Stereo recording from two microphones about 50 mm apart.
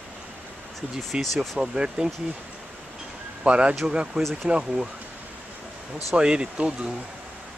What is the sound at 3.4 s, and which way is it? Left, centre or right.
Speech, right.